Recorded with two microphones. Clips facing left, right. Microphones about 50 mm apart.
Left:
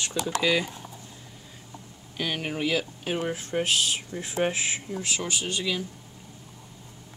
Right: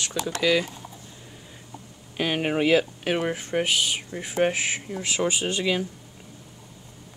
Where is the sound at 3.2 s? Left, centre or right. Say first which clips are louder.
Right 3 dB; right.